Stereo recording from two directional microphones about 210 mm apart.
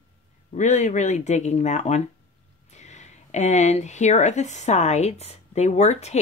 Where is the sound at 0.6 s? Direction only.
35° left (ahead or behind).